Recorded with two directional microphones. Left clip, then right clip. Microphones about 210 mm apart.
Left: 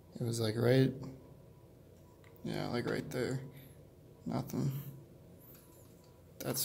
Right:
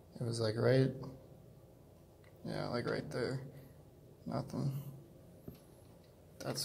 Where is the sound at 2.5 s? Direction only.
25° left (ahead or behind).